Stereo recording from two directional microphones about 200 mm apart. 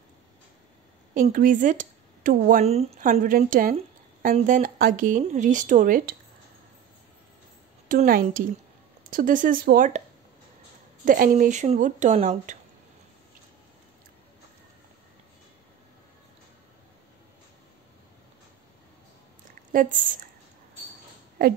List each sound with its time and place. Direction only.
1.3 s speech: 45° right (ahead or behind)
2.7 s speech: 30° right (ahead or behind)
7.9 s a woman's voice: 45° right (ahead or behind)
11.1 s speech: 40° right (ahead or behind)
19.7 s a woman's voice: 40° right (ahead or behind)